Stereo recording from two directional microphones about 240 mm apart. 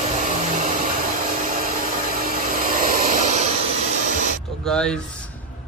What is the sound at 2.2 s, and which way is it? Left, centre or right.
Vacuum cleaner, right.